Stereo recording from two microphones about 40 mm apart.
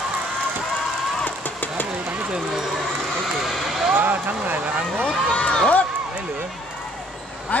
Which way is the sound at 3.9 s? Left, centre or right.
Right.